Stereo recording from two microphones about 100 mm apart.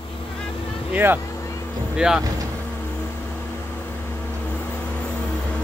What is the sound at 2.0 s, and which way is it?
Speech, 10° right (ahead or behind).